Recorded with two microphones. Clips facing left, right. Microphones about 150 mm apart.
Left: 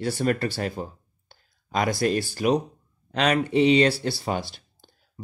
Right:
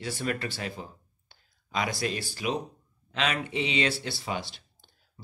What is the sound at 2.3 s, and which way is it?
Speech, 45° left (ahead or behind).